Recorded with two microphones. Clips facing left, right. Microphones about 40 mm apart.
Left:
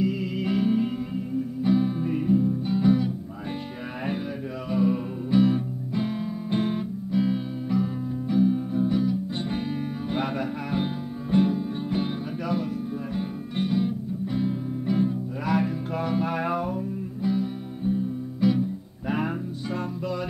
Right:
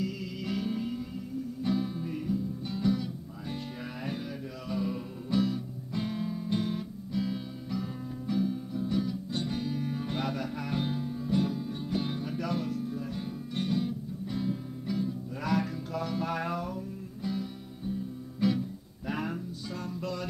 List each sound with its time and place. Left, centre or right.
0.0 s music: left
4.6 s music: left
6.5 s music: left
12.4 s music: centre